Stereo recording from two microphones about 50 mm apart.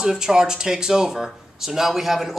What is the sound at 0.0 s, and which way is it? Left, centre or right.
Speech, centre.